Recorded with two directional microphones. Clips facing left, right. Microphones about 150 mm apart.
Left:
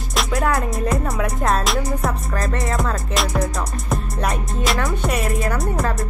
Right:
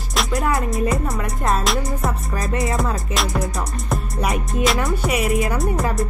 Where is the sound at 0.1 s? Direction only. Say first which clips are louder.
Left 1 dB; centre (ahead or behind).